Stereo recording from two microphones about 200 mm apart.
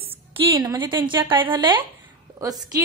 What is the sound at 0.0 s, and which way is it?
A woman's voice, 25° right (ahead or behind).